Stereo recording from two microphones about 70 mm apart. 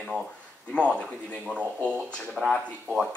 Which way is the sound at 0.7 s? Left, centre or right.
Centre.